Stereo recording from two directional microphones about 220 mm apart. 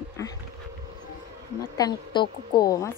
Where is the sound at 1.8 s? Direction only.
20° left (ahead or behind).